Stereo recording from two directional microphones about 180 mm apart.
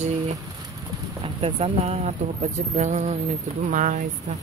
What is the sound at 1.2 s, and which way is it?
Speech, 35° right (ahead or behind).